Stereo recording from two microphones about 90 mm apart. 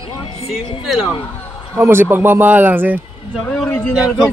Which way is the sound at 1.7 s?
25° right (ahead or behind).